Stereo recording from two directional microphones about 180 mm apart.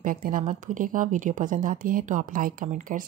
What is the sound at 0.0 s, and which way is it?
Speech, 50° right (ahead or behind).